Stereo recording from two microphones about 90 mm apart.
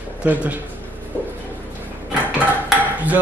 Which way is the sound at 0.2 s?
15° right (ahead or behind).